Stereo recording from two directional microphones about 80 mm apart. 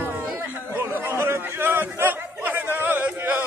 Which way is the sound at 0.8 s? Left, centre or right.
Right.